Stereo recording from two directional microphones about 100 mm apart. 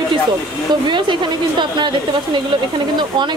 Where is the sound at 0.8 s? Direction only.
50° right (ahead or behind).